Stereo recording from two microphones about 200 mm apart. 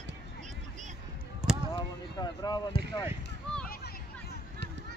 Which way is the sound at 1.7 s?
20° left (ahead or behind).